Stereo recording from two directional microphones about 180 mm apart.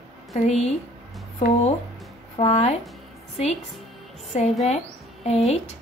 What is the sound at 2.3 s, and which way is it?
Speech, 35° left (ahead or behind).